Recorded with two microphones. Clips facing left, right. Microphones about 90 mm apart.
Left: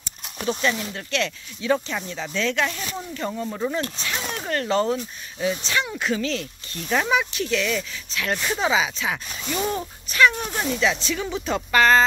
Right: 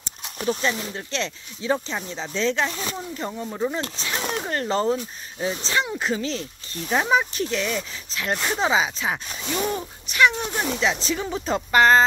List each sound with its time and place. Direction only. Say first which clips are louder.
0.6 s speech: left 1 dB; 20° right (ahead or behind)
3.4 s speech: right 4 dB; 10° right (ahead or behind)
3.7 s speech: left 1 dB; 25° right (ahead or behind)
7.1 s speech: right 1 dB; 30° right (ahead or behind)
9.3 s speech: even; 5° right (ahead or behind)
10.1 s speech: left 1 dB; 15° right (ahead or behind)